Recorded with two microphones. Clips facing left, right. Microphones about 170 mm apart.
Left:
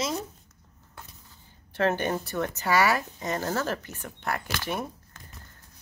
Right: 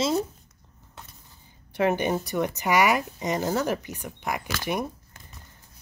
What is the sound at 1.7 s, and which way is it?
Speech, 15° right (ahead or behind).